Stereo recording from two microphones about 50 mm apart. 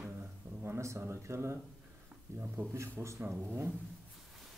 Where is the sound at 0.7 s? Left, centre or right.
Right.